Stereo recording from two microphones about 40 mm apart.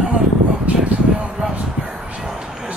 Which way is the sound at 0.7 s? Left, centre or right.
Right.